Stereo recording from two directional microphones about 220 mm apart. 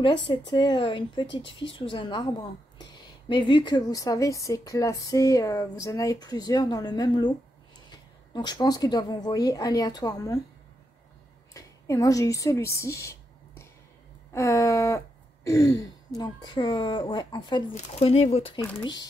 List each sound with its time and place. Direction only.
0.5 s a woman's voice: 20° left (ahead or behind)
11.5 s a woman's voice: 15° left (ahead or behind)
14.3 s a sound: 10° left (ahead or behind)
17.7 s a woman's voice: 30° left (ahead or behind)